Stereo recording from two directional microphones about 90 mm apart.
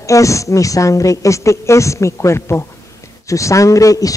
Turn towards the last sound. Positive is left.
turn(degrees=40)  # may be behind; listen again after turning